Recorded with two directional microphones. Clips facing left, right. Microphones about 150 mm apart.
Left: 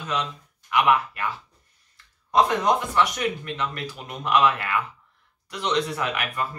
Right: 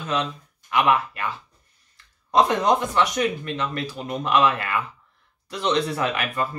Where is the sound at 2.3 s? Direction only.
25° right (ahead or behind).